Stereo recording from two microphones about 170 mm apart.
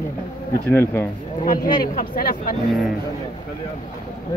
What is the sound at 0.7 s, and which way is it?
Speech, 10° left (ahead or behind).